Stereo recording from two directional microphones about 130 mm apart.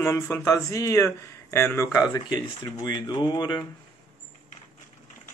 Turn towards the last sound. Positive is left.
turn(degrees=35)  # may be behind; listen again after turning